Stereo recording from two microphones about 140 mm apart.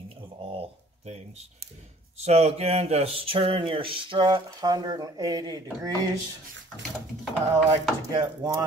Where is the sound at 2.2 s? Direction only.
50° right (ahead or behind); by 5.9 s 30° right (ahead or behind).